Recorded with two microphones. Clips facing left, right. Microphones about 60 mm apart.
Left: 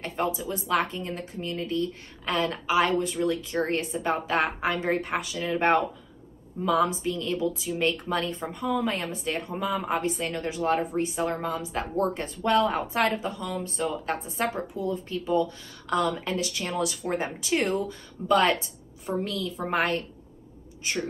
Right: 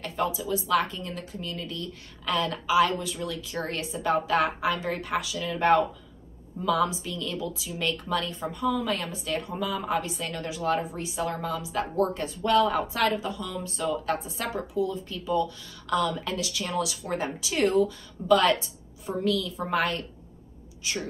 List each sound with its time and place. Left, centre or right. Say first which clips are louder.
0.0 s speech: even; left